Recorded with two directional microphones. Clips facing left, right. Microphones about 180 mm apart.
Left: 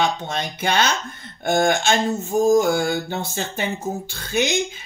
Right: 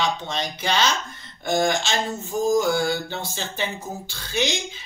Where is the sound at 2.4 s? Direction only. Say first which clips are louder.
Left 4 dB; 50° left (ahead or behind).